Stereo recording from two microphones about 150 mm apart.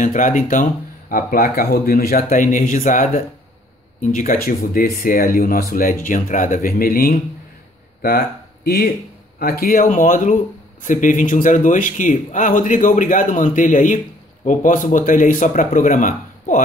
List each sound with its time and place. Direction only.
0.0 s speech: 60° left (ahead or behind); by 5.9 s 80° left
6.0 s speech: 60° left (ahead or behind); by 7.2 s 75° left (ahead or behind)
8.6 s speech: 85° left; by 16.6 s 60° left (ahead or behind)